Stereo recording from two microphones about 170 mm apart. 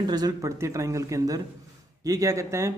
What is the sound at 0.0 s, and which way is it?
Speech, 25° right (ahead or behind).